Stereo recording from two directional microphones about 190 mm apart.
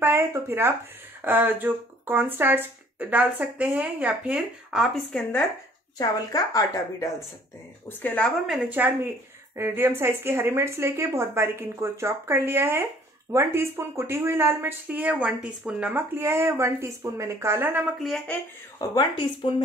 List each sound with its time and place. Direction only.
0.0 s speech: 15° right (ahead or behind); by 5.4 s 5° left (ahead or behind)
5.9 s a woman's voice: 20° left (ahead or behind)
8.5 s speech: 10° right (ahead or behind)
17.9 s speech: centre (ahead or behind)
18.8 s a woman's voice: 25° left (ahead or behind)